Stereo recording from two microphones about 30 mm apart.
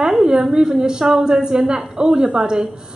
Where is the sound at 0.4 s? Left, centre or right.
Centre.